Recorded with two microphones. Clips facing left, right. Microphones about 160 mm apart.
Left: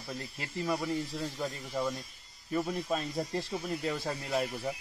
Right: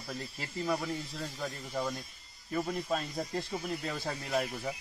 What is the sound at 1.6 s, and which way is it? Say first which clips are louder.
Speech: even; centre (ahead or behind).